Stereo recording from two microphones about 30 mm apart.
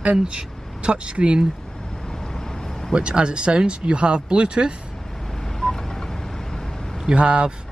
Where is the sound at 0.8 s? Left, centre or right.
Right.